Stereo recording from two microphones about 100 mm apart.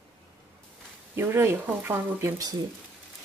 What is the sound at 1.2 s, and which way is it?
Speech, 25° right (ahead or behind).